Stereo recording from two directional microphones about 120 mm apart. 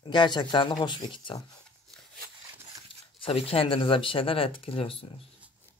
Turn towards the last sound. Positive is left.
turn(degrees=50)  # may be behind; listen again after turning